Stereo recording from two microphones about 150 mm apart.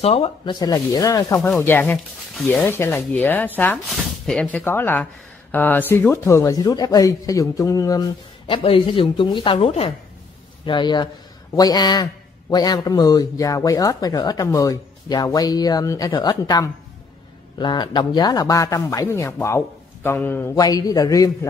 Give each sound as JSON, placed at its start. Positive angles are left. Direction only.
{"t": 0.0, "sound": "a woman's voice", "side_deg": 40}
{"t": 0.6, "sound": "a man's voice", "side_deg": 25}
{"t": 8.5, "sound": "a woman's voice", "side_deg": 35}
{"t": 20.5, "sound": "a man's voice", "side_deg": 25}